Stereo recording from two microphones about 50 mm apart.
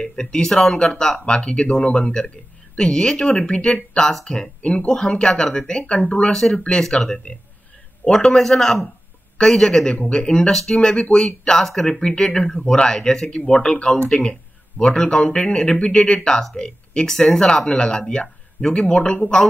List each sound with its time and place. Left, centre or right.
0.0 s speech: centre
6.3 s speech: centre
12.0 s speech: centre